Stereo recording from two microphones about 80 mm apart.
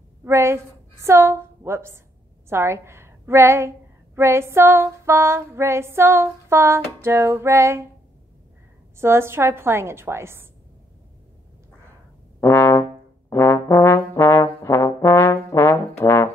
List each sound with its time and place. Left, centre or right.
0.2 s a woman's voice: right
8.9 s a woman's voice: right
12.4 s brass instrument: left
14.1 s trombone: left